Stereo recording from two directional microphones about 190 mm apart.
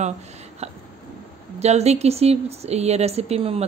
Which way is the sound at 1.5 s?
35° right (ahead or behind).